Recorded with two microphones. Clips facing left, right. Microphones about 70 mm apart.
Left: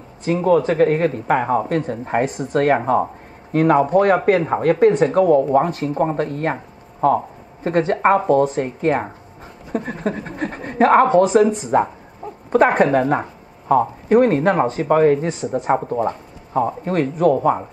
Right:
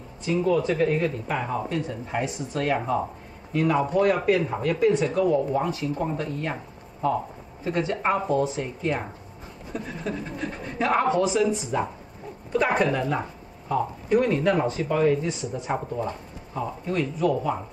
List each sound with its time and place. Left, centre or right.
0.2 s speech: left